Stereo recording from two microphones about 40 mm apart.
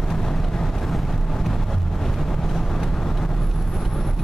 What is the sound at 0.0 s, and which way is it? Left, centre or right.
Vehicle, centre.